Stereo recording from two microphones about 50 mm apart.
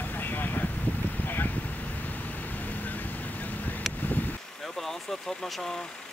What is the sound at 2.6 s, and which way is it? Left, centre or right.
Vehicle, left.